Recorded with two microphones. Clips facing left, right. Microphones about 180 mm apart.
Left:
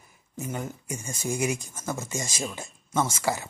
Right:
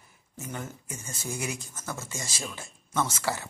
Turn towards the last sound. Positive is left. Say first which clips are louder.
# left 3 dB
turn(degrees=10)  # may be behind; listen again after turning